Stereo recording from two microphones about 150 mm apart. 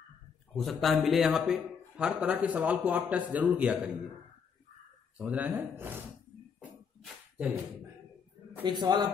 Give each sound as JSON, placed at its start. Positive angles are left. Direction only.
{"t": 0.6, "sound": "a man's voice", "side_deg": 0}
{"t": 5.1, "sound": "speech", "side_deg": -10}
{"t": 7.0, "sound": "a sound", "side_deg": -10}
{"t": 8.6, "sound": "a man's voice", "side_deg": -30}